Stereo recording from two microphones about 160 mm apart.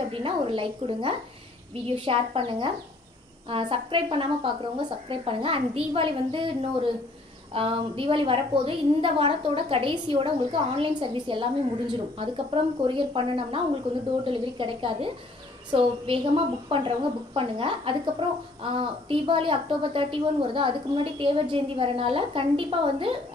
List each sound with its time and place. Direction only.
0.1 s a woman's voice: 35° right (ahead or behind)